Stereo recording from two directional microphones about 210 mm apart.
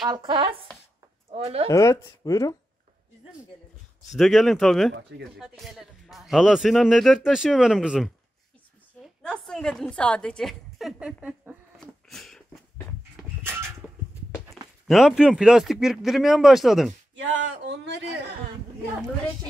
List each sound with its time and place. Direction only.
0.1 s speech: 25° right (ahead or behind)
1.7 s speech: 15° left (ahead or behind)
4.1 s speech: centre (ahead or behind)
9.2 s a sound: 5° left (ahead or behind)
13.4 s a sound: 10° right (ahead or behind)
14.9 s speech: centre (ahead or behind)
17.2 s speech: 55° right (ahead or behind)